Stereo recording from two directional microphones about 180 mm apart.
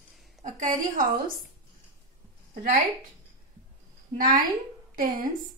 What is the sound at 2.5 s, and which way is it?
Speech, 50° right (ahead or behind).